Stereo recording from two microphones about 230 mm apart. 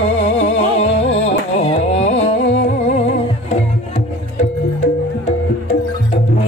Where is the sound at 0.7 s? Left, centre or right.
Left.